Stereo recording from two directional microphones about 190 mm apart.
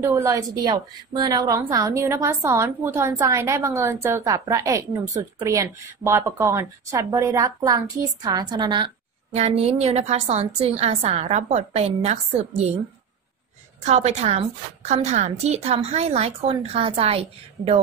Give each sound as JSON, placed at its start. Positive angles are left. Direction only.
{"t": 0.0, "sound": "a woman's voice", "side_deg": -15}
{"t": 13.8, "sound": "speech", "side_deg": -35}